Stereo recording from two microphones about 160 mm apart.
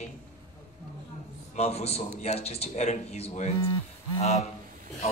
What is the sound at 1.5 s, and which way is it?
A man's voice, 40° left (ahead or behind).